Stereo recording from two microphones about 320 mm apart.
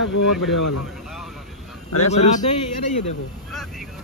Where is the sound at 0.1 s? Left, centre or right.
Left.